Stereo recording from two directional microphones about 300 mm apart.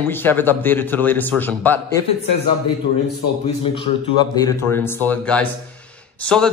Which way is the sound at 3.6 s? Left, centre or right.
Centre.